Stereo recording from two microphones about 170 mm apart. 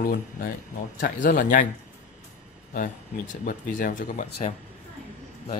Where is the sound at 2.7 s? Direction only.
50° left (ahead or behind).